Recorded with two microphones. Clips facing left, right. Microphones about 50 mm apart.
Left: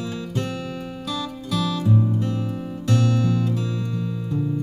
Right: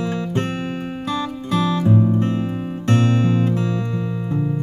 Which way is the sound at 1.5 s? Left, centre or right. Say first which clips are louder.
Right 4 dB; right.